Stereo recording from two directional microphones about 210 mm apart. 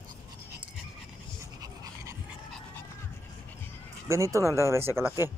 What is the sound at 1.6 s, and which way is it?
Dog, 15° right (ahead or behind).